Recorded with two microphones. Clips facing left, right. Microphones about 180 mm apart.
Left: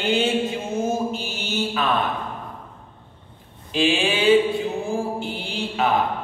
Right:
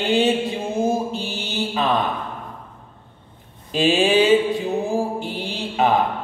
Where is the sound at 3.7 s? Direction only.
40° right (ahead or behind).